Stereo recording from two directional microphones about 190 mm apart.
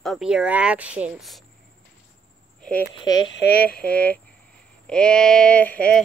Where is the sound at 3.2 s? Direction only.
80° left; by 3.6 s 65° left (ahead or behind).